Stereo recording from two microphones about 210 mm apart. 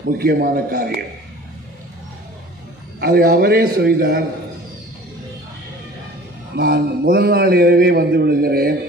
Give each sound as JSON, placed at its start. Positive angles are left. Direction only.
{"t": 0.2, "sound": "a man's voice", "side_deg": -50}
{"t": 3.0, "sound": "a man's voice", "side_deg": -45}
{"t": 6.5, "sound": "a man's voice", "side_deg": -45}